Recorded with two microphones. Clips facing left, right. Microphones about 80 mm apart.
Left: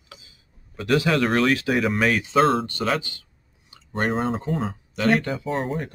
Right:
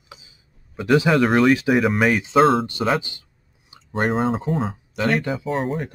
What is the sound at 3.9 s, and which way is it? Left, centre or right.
Speech, centre.